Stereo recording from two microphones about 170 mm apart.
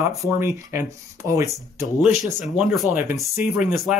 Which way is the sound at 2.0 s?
Centre (ahead or behind).